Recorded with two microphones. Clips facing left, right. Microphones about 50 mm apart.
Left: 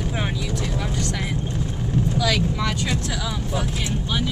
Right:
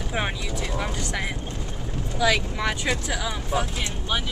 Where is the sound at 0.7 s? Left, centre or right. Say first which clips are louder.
Left 2 dB; centre.